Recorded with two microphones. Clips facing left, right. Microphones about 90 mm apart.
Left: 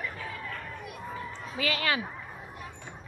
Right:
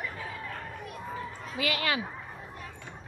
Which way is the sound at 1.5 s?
35° left (ahead or behind).